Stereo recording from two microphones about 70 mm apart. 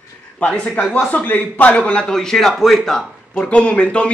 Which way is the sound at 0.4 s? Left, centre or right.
Centre.